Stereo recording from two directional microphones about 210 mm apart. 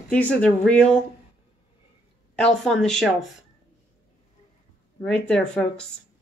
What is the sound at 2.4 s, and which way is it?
Speech, 5° left (ahead or behind).